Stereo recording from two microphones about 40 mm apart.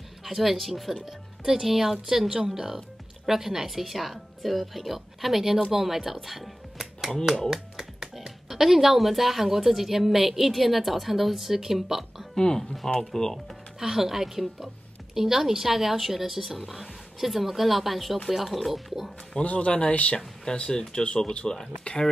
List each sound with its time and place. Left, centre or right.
0.2 s speech: centre
12.4 s speech: centre
13.7 s speech: centre
19.4 s a man's voice: left
20.4 s speech: centre